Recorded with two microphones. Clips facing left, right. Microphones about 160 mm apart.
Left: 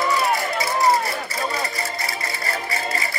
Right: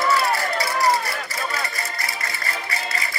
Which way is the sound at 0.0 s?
15° left (ahead or behind).